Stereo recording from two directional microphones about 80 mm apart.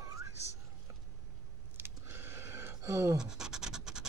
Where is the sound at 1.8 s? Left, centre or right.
Right.